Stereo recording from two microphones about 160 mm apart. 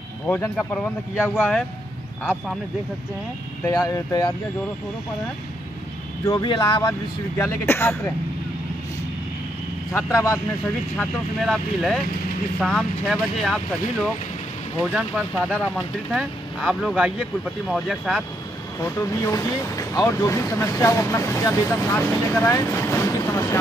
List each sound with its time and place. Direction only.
1.1 s speech: 10° left (ahead or behind)
3.6 s speech: 20° left (ahead or behind)
6.2 s speech: 30° left (ahead or behind)
7.3 s speech: 15° left (ahead or behind)
9.9 s speech: 20° left (ahead or behind)
11.0 s speech: centre (ahead or behind)
14.8 s speech: 5° right (ahead or behind)
18.8 s speech: 20° left (ahead or behind)